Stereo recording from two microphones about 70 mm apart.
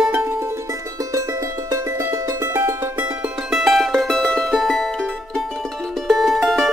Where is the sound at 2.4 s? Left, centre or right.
Right.